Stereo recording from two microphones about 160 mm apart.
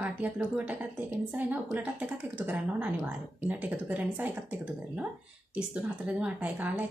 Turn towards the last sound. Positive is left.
turn(degrees=-10)  # may be behind; listen again after turning